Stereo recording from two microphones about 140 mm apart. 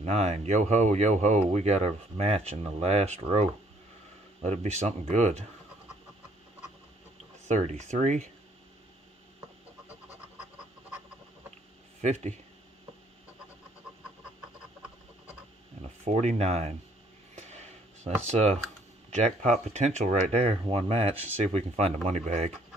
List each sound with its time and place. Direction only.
0.0 s speech: 50° right (ahead or behind)
4.4 s speech: 50° right (ahead or behind)
7.4 s speech: 55° right (ahead or behind)
12.0 s speech: 55° right (ahead or behind)
16.0 s speech: 50° right (ahead or behind)
17.4 s a sound: 50° right (ahead or behind)
18.2 s speech: 50° right (ahead or behind)